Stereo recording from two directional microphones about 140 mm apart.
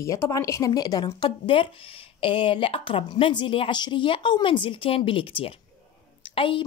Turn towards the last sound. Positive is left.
turn(degrees=40)  # may be behind; listen again after turning